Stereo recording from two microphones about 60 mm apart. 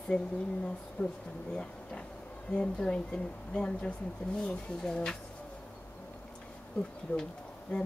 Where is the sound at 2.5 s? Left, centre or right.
Centre.